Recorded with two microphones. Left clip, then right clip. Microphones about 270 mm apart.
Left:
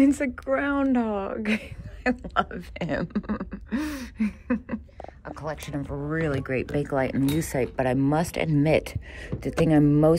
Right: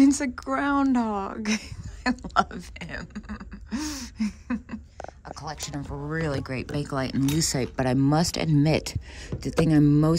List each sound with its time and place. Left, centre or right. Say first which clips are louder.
0.0 s speech: right 1 dB; centre
2.8 s speech: left 11 dB; centre
3.7 s a sound: left 2 dB; centre
5.3 s speech: left 3 dB; centre